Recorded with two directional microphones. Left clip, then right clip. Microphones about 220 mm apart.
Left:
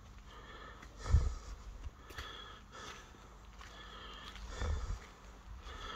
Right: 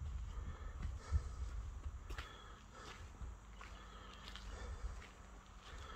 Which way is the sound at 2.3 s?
20° left (ahead or behind).